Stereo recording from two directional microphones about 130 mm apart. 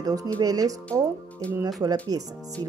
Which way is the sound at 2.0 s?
30° right (ahead or behind).